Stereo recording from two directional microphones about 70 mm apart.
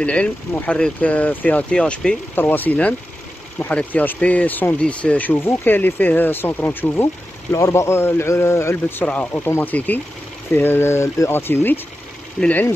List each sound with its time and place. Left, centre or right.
0.0 s speech: centre
1.8 s speech: centre
2.3 s speech: left
7.5 s a man's voice: left
9.0 s speech: centre
9.3 s a man's voice: left
9.6 s a man's voice: left
12.4 s speech: left